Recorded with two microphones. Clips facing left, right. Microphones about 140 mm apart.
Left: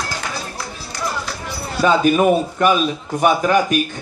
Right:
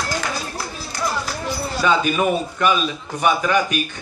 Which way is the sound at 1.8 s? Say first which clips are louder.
Left 5 dB; 45° left (ahead or behind).